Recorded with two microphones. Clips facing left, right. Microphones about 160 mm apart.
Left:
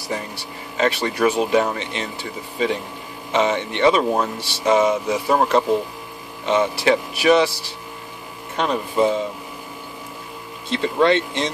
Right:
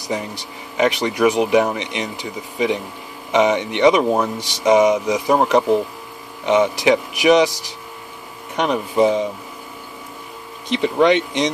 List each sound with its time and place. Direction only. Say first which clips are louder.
0.1 s speech: right 3 dB; 15° right (ahead or behind)
10.7 s speech: right 2 dB; 15° right (ahead or behind)